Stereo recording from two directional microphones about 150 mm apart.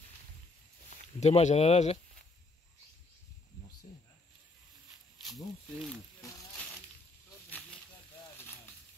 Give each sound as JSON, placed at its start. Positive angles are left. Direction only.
{"t": 1.2, "sound": "speech", "side_deg": 50}
{"t": 5.2, "sound": "snake", "side_deg": 0}
{"t": 6.5, "sound": "a sound", "side_deg": 5}